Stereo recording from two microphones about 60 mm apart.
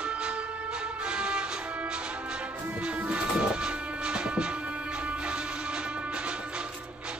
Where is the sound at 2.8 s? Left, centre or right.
Right.